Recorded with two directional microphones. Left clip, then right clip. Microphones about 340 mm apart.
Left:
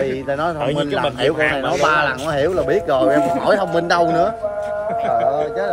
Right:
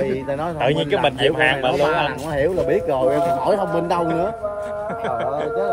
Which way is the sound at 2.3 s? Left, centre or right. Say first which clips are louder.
Even; centre.